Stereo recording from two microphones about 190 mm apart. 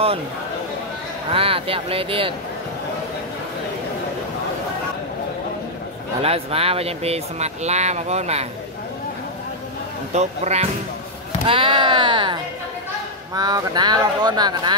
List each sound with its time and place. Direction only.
1.3 s speech: 30° right (ahead or behind)
6.2 s speech: 30° right (ahead or behind)
10.1 s speech: 35° right (ahead or behind)